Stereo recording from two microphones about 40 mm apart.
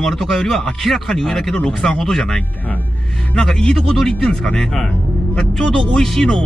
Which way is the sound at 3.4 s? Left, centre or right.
Centre.